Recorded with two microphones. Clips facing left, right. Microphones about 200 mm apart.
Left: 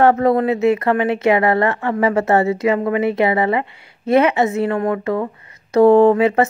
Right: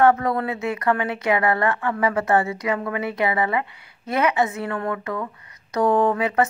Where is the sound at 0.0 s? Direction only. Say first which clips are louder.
Left 5 dB; 25° left (ahead or behind).